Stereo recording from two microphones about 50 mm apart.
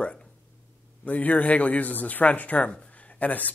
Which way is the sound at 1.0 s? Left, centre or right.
Left.